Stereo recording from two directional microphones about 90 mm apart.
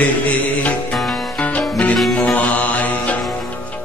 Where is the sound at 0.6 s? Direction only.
15° left (ahead or behind).